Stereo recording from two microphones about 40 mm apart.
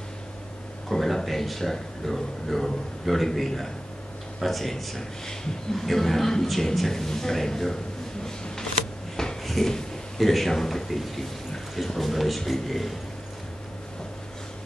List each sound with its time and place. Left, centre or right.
0.8 s a man's voice: centre
9.1 s a sound: centre
9.4 s a man's voice: centre